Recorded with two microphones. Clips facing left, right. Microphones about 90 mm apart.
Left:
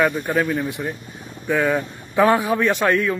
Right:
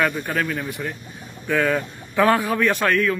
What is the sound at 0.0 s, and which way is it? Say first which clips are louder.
A man's voice: left 3 dB; 15° left (ahead or behind).